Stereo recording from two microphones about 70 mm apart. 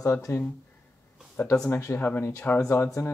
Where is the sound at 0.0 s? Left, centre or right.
Left.